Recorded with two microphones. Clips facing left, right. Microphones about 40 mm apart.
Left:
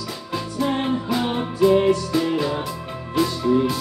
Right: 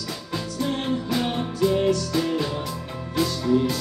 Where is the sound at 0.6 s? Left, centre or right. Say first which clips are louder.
Left 4 dB; centre.